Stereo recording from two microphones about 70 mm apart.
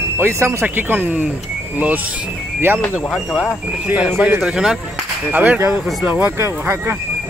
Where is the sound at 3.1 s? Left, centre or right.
Centre.